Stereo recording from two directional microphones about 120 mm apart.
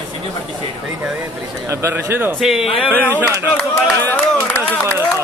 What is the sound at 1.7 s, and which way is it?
Speech, 25° right (ahead or behind).